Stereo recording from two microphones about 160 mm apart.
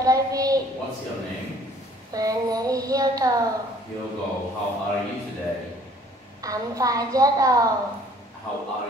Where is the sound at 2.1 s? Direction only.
20° right (ahead or behind).